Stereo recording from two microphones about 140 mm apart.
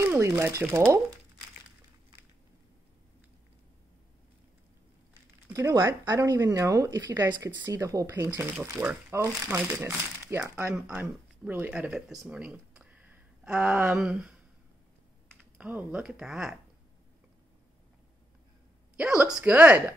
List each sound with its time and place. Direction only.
0.0 s speech: 15° right (ahead or behind)
5.5 s speech: 25° right (ahead or behind); by 14.3 s 5° right (ahead or behind)
15.5 s speech: 10° right (ahead or behind)
18.9 s speech: 5° right (ahead or behind)